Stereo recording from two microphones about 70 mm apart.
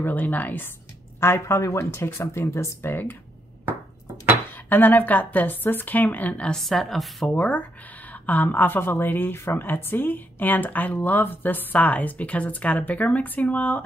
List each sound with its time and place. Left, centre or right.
0.0 s a woman's voice: left
1.2 s speech: left
4.5 s a woman's voice: left
6.5 s speech: centre
7.3 s a woman's voice: left